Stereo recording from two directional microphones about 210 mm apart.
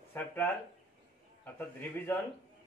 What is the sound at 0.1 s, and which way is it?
Speech, 10° left (ahead or behind).